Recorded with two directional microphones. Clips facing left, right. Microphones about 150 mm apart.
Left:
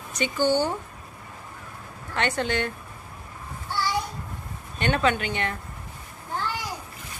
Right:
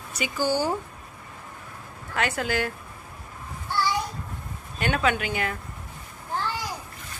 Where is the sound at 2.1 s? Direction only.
5° right (ahead or behind).